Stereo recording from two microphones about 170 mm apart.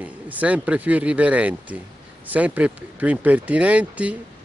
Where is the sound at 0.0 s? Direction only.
10° right (ahead or behind).